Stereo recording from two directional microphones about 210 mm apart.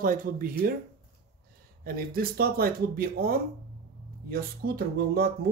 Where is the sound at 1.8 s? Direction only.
45° right (ahead or behind).